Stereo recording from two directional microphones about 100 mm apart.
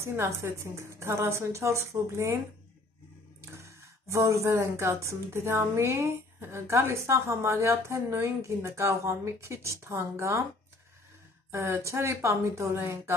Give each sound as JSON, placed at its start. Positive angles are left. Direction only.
{"t": 0.0, "sound": "speech", "side_deg": -25}
{"t": 3.3, "sound": "speech", "side_deg": -30}
{"t": 11.5, "sound": "speech", "side_deg": -25}